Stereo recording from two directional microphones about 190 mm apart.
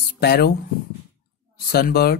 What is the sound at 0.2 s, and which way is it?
Speech, 55° left (ahead or behind).